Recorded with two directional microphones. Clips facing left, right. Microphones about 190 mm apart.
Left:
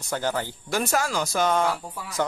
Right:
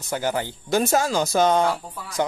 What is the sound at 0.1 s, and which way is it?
Speech, 15° right (ahead or behind).